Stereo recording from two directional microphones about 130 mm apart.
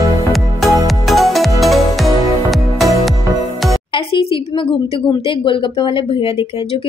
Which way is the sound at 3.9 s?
45° left (ahead or behind).